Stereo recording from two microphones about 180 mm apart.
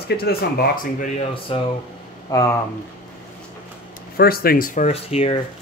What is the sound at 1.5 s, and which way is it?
Speech, 30° left (ahead or behind).